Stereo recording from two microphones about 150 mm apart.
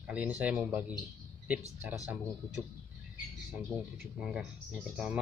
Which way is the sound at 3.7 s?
20° right (ahead or behind).